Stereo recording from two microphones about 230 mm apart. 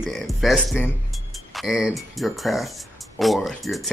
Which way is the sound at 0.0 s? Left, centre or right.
Centre.